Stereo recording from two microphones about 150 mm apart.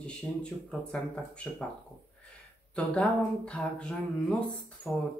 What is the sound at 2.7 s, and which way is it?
Speech, 5° left (ahead or behind).